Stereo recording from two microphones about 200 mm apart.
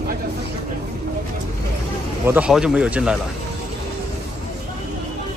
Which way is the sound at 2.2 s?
5° right (ahead or behind).